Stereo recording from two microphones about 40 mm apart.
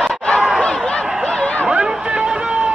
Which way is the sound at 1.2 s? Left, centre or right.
Left.